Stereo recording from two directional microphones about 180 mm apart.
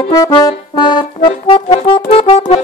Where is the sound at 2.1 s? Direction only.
35° left (ahead or behind).